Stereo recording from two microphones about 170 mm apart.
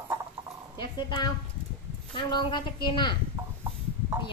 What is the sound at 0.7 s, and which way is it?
Speech, 25° left (ahead or behind).